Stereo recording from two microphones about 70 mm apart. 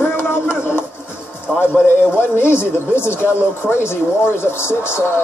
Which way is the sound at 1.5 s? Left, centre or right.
Centre.